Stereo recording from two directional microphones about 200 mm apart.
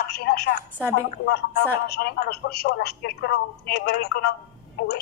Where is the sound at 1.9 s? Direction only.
50° left (ahead or behind).